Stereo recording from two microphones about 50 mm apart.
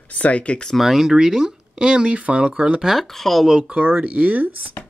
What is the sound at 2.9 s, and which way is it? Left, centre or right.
Speech, centre.